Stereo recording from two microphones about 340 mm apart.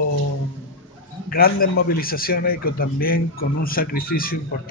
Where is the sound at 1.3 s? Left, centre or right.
Left.